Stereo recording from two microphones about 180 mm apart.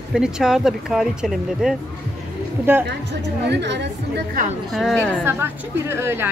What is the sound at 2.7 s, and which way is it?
Speech, 10° right (ahead or behind).